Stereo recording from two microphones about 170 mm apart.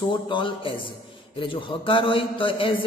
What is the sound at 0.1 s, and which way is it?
A man's voice, 30° left (ahead or behind).